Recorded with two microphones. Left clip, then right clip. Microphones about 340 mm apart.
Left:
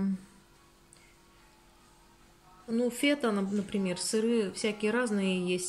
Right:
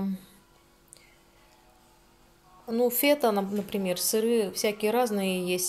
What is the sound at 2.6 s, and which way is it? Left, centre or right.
Speech, centre.